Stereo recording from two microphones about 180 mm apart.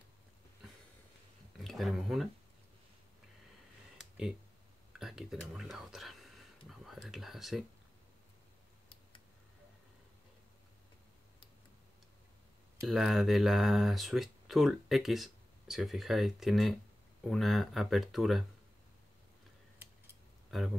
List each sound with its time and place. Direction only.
1.6 s speech: centre (ahead or behind)
4.9 s speech: centre (ahead or behind)
12.8 s speech: centre (ahead or behind)
20.5 s speech: centre (ahead or behind)